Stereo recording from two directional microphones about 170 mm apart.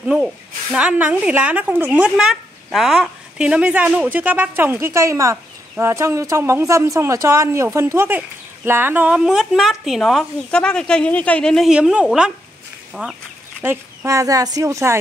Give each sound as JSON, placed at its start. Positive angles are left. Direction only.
{"t": 0.0, "sound": "a woman's voice", "side_deg": -5}